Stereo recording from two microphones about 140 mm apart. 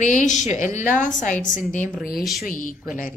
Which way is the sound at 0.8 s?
70° left (ahead or behind).